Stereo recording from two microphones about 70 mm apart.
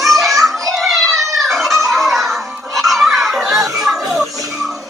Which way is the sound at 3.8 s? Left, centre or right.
Centre.